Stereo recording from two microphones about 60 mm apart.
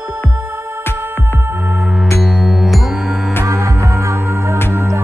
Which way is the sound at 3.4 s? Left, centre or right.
Right.